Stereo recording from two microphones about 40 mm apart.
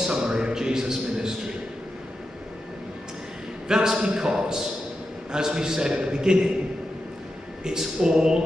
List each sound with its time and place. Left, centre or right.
0.0 s a sound: centre
3.6 s a man's voice: centre
7.6 s speech: centre